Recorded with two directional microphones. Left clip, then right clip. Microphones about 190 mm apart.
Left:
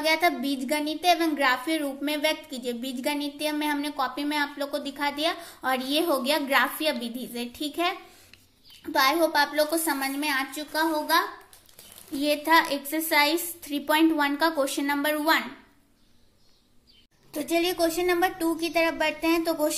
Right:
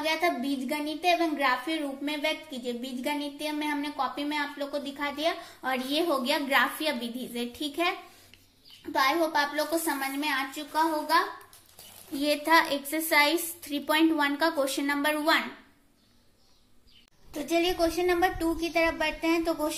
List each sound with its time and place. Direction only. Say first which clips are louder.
0.0 s a woman's voice: left 4 dB; 25° left (ahead or behind)
17.3 s a woman's voice: left 1 dB; 20° left (ahead or behind)